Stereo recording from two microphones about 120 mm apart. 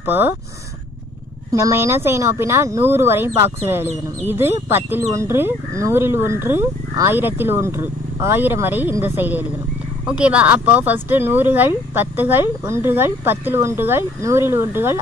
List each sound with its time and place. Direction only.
0.0 s speech: 15° right (ahead or behind)
1.5 s speech: 25° right (ahead or behind)